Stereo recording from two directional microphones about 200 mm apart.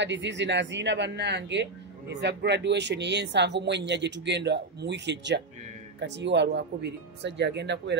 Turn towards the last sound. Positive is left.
turn(degrees=-60)  # may be behind; listen again after turning